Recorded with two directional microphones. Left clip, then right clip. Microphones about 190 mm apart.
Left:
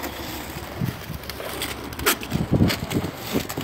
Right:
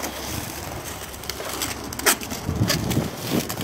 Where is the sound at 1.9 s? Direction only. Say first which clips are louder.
Right 1 dB; 20° right (ahead or behind).